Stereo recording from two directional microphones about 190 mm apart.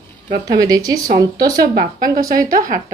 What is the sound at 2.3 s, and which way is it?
Speech, 50° right (ahead or behind).